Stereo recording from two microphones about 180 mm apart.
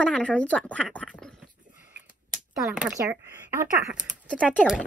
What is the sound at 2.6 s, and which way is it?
Speech, 5° right (ahead or behind).